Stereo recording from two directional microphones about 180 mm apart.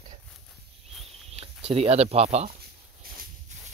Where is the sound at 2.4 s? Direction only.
55° right (ahead or behind).